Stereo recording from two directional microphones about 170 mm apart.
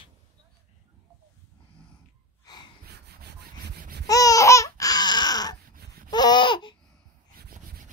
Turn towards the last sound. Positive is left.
turn(degrees=30)  # may be behind; listen again after turning